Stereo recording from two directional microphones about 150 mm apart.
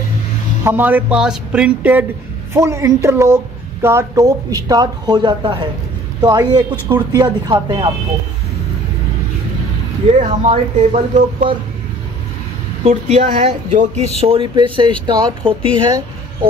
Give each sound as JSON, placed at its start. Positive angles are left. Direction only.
{"t": 0.7, "sound": "a woman's voice", "side_deg": -10}
{"t": 10.1, "sound": "speech", "side_deg": -45}
{"t": 12.8, "sound": "speech", "side_deg": -45}
{"t": 14.2, "sound": "a woman's voice", "side_deg": -35}